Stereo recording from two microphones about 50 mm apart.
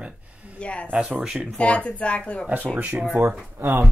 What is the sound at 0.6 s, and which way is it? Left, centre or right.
Speech, left.